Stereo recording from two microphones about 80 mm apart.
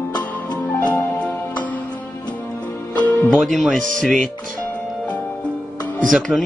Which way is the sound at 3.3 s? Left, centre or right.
Centre.